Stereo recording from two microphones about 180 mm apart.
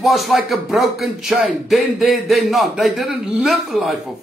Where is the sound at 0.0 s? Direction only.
Centre (ahead or behind).